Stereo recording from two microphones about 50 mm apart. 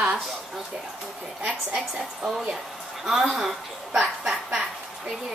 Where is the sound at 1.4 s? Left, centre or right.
Right.